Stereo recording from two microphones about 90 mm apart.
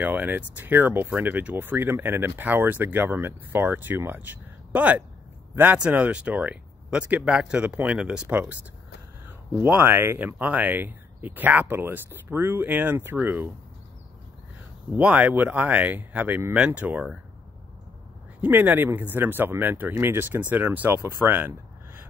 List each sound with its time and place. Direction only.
0.0 s speech: 20° right (ahead or behind)
9.6 s speech: 25° right (ahead or behind)
15.0 s speech: 15° right (ahead or behind)
18.4 s speech: 20° right (ahead or behind)
21.2 s a sound: 25° right (ahead or behind)